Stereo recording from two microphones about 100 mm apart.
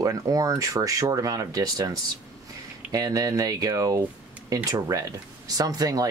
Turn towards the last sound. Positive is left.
turn(degrees=-40)  # may be behind; listen again after turning